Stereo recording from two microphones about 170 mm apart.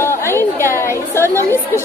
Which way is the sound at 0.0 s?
15° left (ahead or behind).